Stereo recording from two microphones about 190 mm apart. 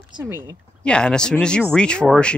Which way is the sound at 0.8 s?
5° left (ahead or behind).